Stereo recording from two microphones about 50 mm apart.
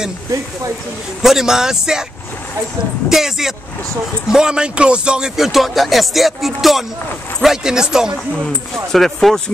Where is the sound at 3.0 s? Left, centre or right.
Centre.